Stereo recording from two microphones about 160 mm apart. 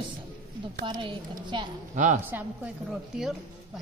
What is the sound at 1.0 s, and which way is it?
Speech, 30° right (ahead or behind).